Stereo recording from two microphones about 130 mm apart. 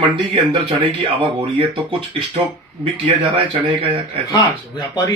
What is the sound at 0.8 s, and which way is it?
Speech, 45° right (ahead or behind).